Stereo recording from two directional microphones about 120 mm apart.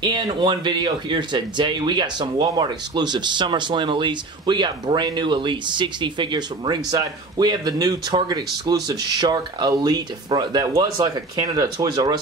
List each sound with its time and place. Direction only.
0.0 s speech: 40° right (ahead or behind)